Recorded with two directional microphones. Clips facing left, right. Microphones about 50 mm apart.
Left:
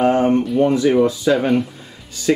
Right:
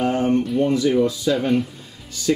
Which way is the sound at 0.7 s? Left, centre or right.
Left.